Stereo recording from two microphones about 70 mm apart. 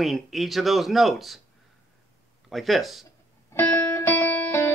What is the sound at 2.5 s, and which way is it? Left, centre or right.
Speech, centre.